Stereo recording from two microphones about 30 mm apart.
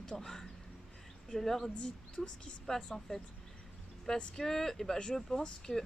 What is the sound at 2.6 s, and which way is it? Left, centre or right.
Speech, centre.